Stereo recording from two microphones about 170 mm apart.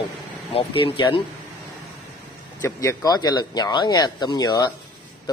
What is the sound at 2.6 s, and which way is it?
Speech, 15° left (ahead or behind).